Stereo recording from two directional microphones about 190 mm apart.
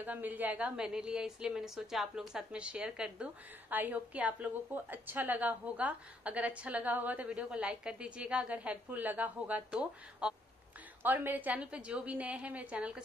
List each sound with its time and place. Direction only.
0.0 s a woman's voice: 10° right (ahead or behind)